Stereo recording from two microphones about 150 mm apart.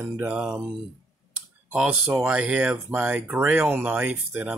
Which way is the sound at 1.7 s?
5° right (ahead or behind).